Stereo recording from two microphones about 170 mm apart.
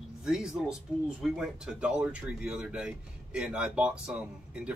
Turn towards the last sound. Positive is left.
turn(degrees=-5)  # may be behind; listen again after turning